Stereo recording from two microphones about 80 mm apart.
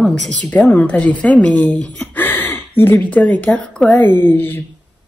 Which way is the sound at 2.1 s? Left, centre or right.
Left.